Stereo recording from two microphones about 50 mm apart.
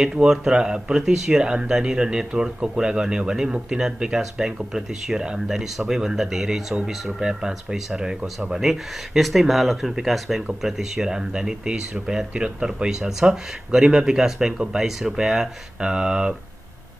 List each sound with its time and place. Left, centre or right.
0.0 s speech: centre
8.6 s speech: centre